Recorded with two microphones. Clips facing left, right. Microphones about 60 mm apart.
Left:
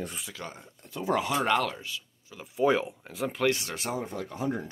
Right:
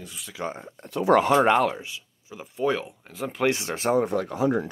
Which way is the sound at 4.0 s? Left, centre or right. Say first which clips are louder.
Right 10 dB; right.